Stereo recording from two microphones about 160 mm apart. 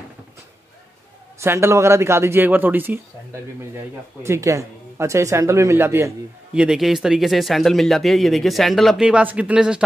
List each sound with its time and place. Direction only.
1.4 s speech: 15° right (ahead or behind)
6.5 s speech: 5° right (ahead or behind)